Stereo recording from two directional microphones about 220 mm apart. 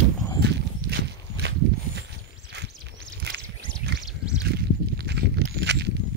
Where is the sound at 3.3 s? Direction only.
50° right (ahead or behind).